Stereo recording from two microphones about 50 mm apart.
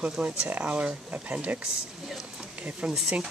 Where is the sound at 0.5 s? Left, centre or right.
Right.